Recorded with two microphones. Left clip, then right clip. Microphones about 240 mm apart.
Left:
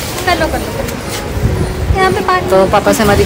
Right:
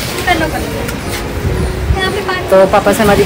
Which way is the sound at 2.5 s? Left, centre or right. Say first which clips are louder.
Right 4 dB; centre.